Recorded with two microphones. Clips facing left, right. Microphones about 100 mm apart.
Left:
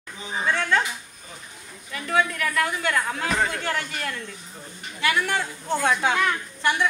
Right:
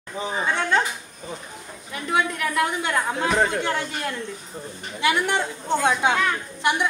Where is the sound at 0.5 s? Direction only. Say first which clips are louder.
Even; 25° right (ahead or behind).